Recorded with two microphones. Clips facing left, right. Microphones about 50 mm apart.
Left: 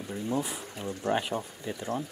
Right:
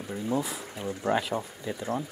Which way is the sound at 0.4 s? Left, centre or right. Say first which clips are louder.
Right 1 dB; centre.